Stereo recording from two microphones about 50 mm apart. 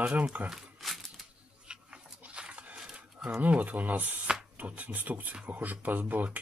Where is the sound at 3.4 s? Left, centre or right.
Right.